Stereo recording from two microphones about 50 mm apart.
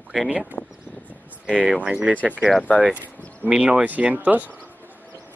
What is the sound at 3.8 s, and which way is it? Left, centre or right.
Speech, right.